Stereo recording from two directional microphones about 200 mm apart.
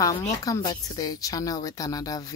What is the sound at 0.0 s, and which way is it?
Speech, 15° left (ahead or behind).